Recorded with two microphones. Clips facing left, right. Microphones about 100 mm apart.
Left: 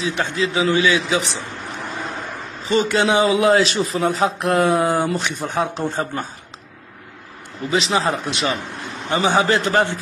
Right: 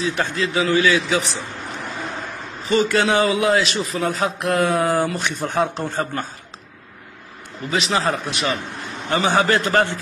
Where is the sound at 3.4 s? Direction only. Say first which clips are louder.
Left 3 dB; 35° left (ahead or behind).